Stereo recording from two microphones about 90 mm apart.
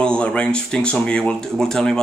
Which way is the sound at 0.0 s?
10° left (ahead or behind).